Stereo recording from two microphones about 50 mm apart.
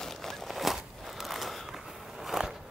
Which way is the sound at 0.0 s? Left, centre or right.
Centre.